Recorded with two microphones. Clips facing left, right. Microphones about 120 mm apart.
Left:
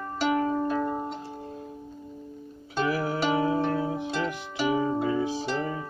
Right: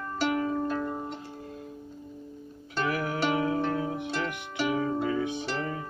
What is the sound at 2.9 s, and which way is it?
Music, 30° left (ahead or behind).